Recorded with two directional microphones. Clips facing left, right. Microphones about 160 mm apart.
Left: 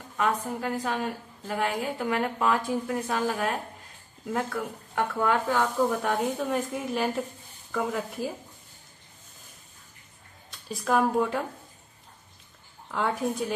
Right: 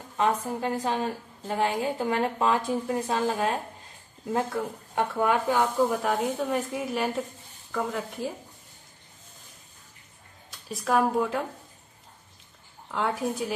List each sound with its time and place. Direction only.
0.2 s a woman's voice: 25° right (ahead or behind)
4.9 s speech: 15° right (ahead or behind)
6.0 s speech: centre (ahead or behind)
10.7 s speech: centre (ahead or behind)
12.9 s speech: centre (ahead or behind)